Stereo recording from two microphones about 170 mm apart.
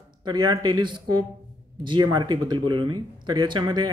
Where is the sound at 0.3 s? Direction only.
25° right (ahead or behind).